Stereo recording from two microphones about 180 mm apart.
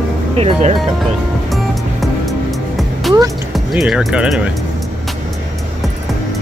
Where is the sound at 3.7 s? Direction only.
5° right (ahead or behind).